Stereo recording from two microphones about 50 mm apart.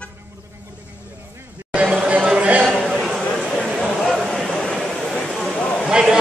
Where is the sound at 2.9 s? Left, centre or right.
Centre.